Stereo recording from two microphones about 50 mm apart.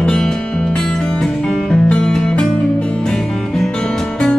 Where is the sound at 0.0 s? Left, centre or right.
Centre.